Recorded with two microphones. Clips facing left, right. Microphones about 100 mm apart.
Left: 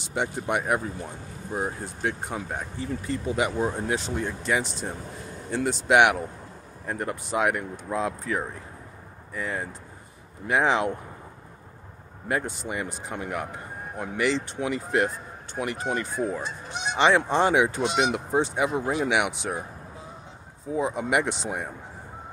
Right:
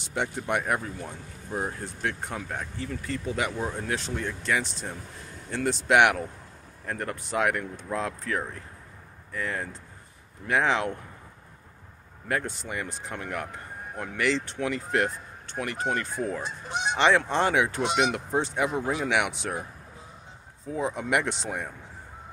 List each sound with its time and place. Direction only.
0.1 s a man's voice: 10° left (ahead or behind)
12.3 s a man's voice: 15° left (ahead or behind)
20.7 s a man's voice: 10° left (ahead or behind)